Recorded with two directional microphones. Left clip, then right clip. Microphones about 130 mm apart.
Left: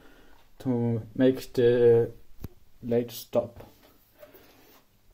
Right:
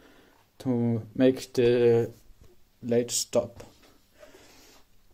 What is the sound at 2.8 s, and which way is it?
Speech, 15° right (ahead or behind).